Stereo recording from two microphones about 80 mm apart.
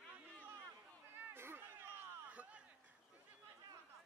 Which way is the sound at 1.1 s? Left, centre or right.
Right.